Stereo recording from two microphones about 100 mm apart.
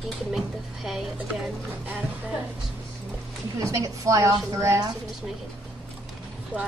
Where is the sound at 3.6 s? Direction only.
35° right (ahead or behind).